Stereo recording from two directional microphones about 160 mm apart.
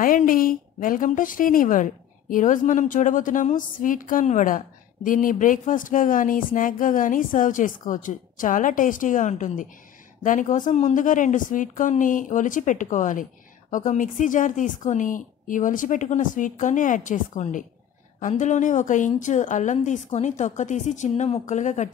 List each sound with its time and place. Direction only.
0.0 s a woman's voice: 60° left (ahead or behind)